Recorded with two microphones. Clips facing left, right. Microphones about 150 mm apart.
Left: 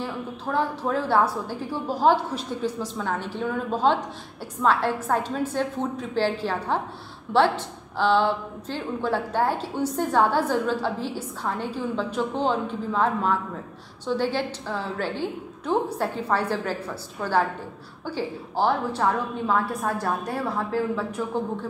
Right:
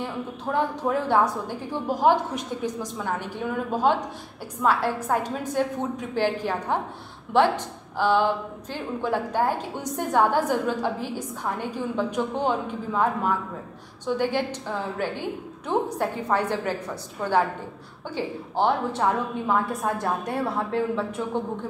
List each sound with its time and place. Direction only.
0.0 s a woman's voice: 20° right (ahead or behind)